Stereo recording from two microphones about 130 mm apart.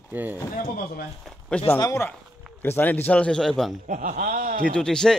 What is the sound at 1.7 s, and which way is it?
A man's voice, 25° left (ahead or behind).